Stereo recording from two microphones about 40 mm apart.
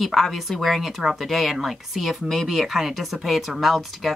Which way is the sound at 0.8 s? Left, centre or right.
Centre.